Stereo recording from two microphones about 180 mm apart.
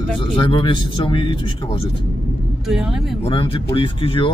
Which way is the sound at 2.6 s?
5° right (ahead or behind).